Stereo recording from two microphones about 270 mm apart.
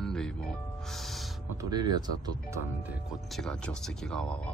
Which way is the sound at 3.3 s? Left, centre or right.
Centre.